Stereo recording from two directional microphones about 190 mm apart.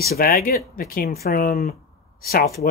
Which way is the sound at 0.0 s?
55° left (ahead or behind).